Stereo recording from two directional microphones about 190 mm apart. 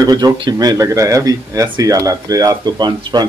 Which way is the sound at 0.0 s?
20° right (ahead or behind).